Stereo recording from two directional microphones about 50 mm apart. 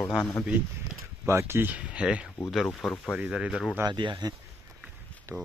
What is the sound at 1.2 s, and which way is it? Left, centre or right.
Speech, right.